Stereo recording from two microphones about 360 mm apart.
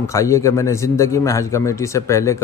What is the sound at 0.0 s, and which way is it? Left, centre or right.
A man's voice, centre.